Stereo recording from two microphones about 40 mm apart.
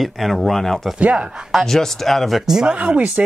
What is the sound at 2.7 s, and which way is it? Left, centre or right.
Speech, right.